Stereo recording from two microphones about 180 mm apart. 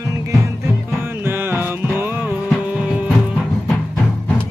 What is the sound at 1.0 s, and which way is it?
Music, 15° right (ahead or behind).